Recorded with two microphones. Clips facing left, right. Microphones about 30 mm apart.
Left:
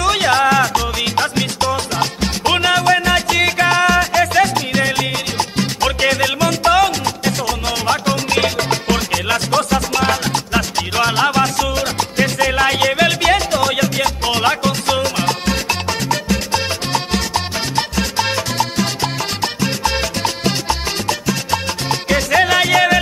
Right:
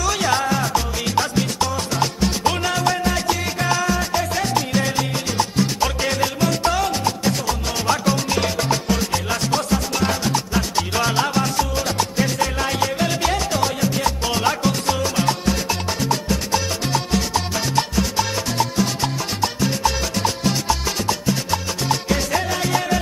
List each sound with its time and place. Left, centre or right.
0.0 s music: left
0.5 s music: left
1.0 s music: left
5.9 s music: left
7.8 s music: left
11.0 s music: left
11.3 s music: left
14.2 s music: left
15.0 s music: left
16.0 s music: left
16.5 s music: left